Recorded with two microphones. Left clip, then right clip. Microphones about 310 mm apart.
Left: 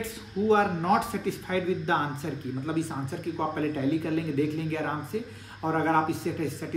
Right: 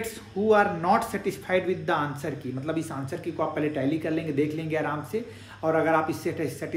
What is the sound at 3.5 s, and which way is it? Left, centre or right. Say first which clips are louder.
Speech: right 1 dB; centre.